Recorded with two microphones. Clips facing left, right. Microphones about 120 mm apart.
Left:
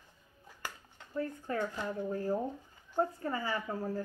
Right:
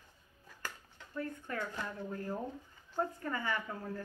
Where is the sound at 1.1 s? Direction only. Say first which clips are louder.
Left 4 dB; 30° left (ahead or behind).